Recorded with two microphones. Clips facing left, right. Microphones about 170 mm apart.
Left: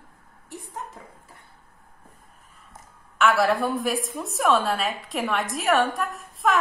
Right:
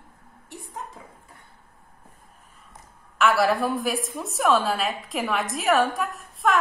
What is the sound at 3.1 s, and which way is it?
A woman's voice, centre (ahead or behind).